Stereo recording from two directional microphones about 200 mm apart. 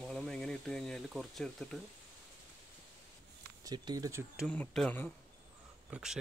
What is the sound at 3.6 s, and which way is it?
Speech, 20° right (ahead or behind).